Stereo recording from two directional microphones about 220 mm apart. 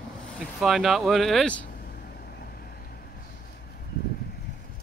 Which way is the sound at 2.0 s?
45° left (ahead or behind).